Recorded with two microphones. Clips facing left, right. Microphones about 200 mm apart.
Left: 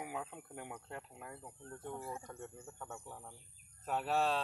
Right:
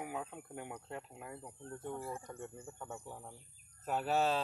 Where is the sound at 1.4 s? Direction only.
20° right (ahead or behind).